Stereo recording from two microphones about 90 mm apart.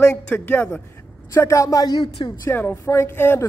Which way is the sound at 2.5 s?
20° left (ahead or behind).